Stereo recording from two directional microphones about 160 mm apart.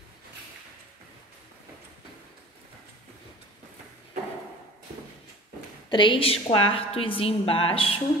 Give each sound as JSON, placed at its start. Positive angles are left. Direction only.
{"t": 5.9, "sound": "a woman's voice", "side_deg": 30}